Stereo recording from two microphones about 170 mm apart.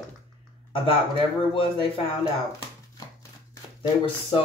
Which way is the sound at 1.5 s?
30° left (ahead or behind).